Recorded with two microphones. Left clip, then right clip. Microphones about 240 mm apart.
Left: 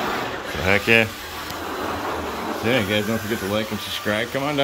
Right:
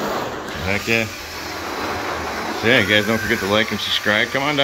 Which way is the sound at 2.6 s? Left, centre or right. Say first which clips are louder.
Right 6 dB; centre.